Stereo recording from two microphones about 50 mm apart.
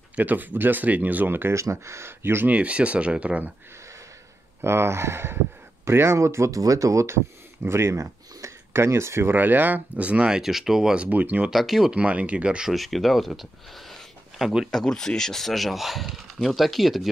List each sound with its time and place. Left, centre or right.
0.2 s speech: right
1.5 s speech: right
2.4 s speech: right
4.6 s speech: right
7.6 s speech: right
9.3 s speech: right
10.4 s speech: centre
11.1 s speech: right
11.5 s speech: centre
11.9 s speech: right
12.6 s speech: centre